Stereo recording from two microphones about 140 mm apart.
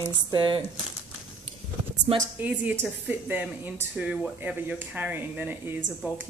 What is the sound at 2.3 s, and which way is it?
A woman's voice, 10° right (ahead or behind).